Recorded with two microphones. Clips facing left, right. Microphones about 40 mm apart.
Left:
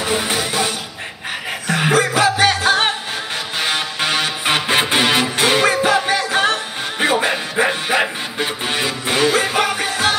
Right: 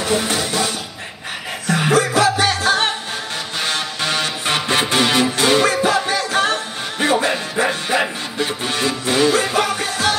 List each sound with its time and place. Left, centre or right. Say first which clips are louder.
0.0 s music: even; centre
1.7 s music: even; centre